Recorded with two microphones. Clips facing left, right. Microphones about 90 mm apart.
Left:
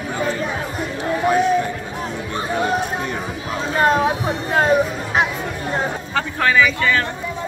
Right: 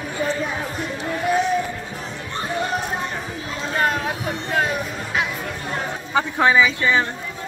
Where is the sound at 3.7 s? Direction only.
30° left (ahead or behind).